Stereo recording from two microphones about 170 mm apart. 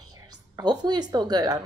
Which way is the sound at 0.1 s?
25° right (ahead or behind).